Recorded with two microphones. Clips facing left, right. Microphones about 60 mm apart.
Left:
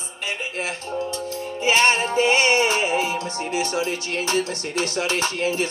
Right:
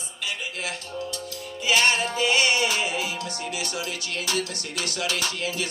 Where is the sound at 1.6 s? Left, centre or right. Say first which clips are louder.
Left 3 dB; left.